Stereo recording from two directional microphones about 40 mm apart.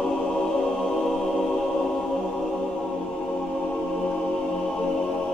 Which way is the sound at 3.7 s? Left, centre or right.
Centre.